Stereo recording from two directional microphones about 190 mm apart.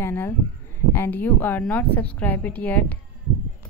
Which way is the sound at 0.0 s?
10° left (ahead or behind).